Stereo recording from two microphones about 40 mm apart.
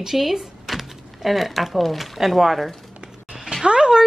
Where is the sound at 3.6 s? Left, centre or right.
Right.